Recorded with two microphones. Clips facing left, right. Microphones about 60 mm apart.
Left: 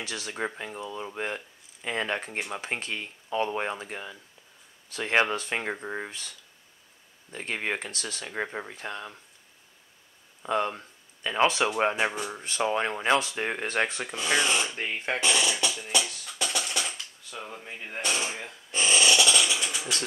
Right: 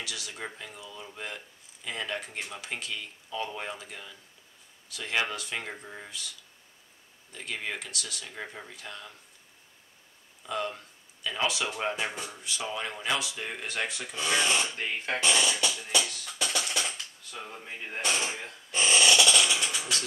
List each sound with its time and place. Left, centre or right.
0.0 s speech: left
7.3 s speech: left
10.4 s speech: left
12.4 s speech: left
14.0 s speech: left
14.4 s speech: centre
15.2 s speech: centre
15.5 s music: centre
16.3 s typewriter: centre
18.8 s a sound: centre
19.0 s a sound: centre